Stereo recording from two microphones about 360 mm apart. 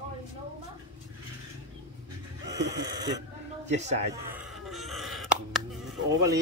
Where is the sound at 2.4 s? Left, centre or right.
Centre.